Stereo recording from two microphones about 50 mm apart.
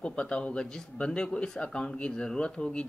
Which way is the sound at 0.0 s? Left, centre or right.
Centre.